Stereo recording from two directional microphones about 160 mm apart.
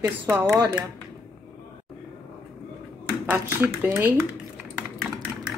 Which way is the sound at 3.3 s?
10° right (ahead or behind).